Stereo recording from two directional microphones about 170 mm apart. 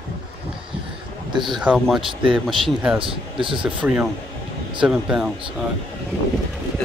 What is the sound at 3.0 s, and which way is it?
Speech, 30° right (ahead or behind).